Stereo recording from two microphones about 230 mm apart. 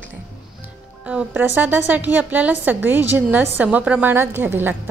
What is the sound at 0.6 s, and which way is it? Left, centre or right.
Music, centre.